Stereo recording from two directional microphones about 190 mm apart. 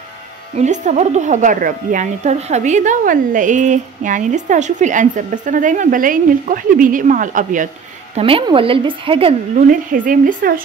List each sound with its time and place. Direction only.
0.6 s a woman's voice: 40° right (ahead or behind)
8.2 s a woman's voice: 30° right (ahead or behind)
9.7 s speech: 45° right (ahead or behind)